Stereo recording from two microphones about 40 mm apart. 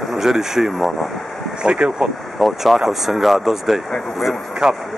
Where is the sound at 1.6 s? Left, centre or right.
Right.